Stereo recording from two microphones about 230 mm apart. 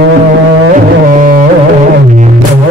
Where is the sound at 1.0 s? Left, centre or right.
Right.